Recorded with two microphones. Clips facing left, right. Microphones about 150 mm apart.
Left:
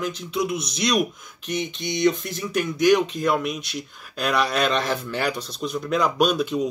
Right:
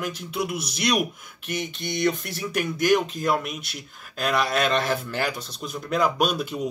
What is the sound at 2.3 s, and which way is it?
Speech, 10° right (ahead or behind).